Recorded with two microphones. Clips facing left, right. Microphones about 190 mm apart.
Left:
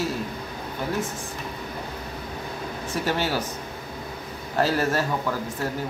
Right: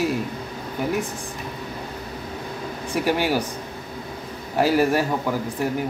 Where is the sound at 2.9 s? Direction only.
15° right (ahead or behind).